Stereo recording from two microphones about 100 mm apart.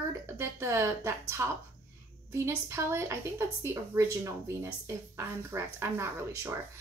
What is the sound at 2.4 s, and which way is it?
A woman's voice, 25° right (ahead or behind).